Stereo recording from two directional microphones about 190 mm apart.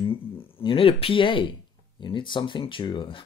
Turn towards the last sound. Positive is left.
turn(degrees=25)  # may be behind; listen again after turning